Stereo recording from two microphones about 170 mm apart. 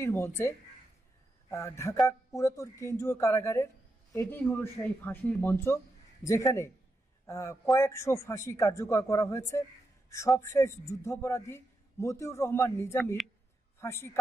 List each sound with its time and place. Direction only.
0.0 s speech: 15° left (ahead or behind)